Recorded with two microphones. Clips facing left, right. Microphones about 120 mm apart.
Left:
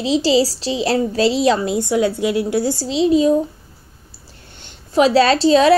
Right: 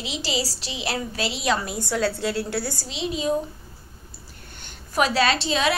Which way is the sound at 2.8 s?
35° left (ahead or behind).